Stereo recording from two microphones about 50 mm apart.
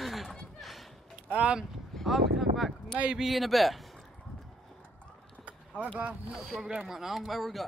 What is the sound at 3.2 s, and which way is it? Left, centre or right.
Speech, centre.